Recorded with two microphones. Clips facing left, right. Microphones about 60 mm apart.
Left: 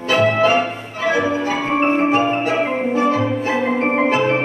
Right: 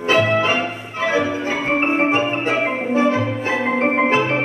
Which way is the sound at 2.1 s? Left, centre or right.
Right.